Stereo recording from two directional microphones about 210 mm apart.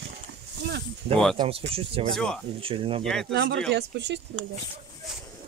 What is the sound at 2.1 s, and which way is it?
Speech, 5° left (ahead or behind).